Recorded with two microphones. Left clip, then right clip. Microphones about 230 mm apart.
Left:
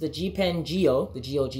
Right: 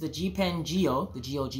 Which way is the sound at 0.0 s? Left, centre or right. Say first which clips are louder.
Left 4 dB; centre.